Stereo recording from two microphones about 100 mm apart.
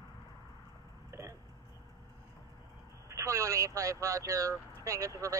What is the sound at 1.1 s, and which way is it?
Hiccup, 30° right (ahead or behind).